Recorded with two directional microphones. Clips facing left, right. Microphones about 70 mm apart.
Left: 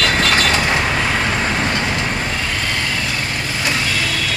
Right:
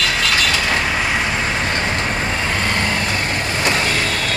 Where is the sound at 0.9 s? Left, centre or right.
Centre.